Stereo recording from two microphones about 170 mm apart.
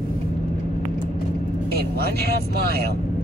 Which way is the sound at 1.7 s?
65° right (ahead or behind).